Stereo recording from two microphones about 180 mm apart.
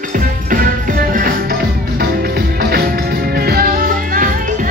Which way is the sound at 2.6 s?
55° right (ahead or behind).